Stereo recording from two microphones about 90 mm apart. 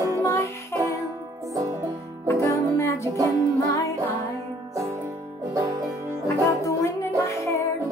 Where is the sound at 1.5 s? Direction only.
40° right (ahead or behind).